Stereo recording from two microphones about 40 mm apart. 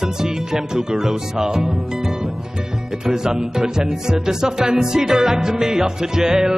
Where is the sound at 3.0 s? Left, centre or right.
Centre.